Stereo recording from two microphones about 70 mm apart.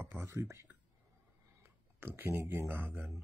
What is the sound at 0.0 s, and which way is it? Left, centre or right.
Speech, right.